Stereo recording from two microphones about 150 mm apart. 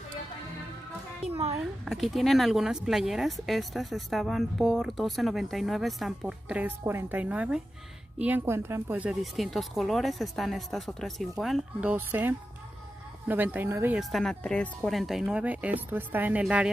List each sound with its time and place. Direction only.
1.3 s speech: 40° right (ahead or behind)
1.6 s speech: centre (ahead or behind)
11.9 s speech: 15° right (ahead or behind)
13.9 s speech: centre (ahead or behind)